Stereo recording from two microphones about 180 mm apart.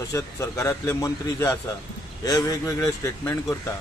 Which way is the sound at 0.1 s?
15° left (ahead or behind).